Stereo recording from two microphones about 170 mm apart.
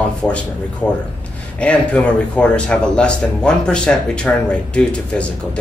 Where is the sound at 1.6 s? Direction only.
10° left (ahead or behind).